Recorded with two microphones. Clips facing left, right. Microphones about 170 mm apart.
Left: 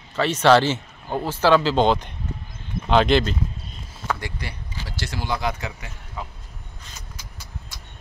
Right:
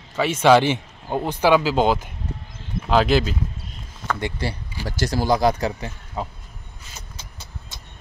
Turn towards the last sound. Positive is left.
turn(degrees=-25)  # may be behind; listen again after turning